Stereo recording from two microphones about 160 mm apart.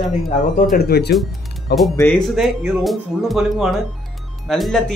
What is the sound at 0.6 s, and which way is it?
Speech, 65° left (ahead or behind).